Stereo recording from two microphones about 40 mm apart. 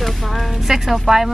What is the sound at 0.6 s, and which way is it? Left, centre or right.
Speech, centre.